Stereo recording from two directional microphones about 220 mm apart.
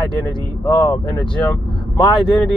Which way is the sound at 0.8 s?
5° left (ahead or behind).